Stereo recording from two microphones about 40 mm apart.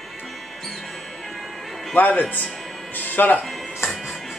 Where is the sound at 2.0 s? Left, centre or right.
Left.